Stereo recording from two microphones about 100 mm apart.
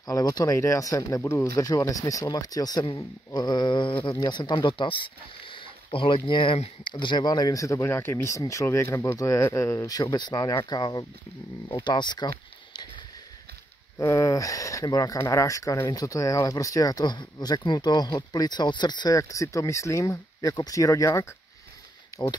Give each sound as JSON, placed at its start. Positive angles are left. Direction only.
{"t": 0.0, "sound": "speech", "side_deg": 40}
{"t": 6.9, "sound": "speech", "side_deg": 50}
{"t": 13.9, "sound": "speech", "side_deg": 30}